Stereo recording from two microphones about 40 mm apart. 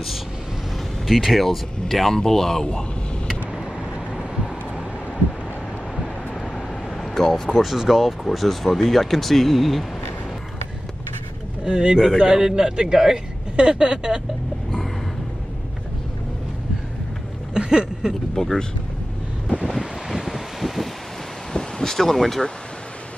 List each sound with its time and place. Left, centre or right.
1.0 s speech: centre
7.0 s speech: centre
7.6 s a man's voice: centre
11.6 s a man's voice: centre
13.6 s speech: right
17.6 s a sound: centre
18.3 s speech: centre
19.8 s wind: centre
21.5 s vehicle: centre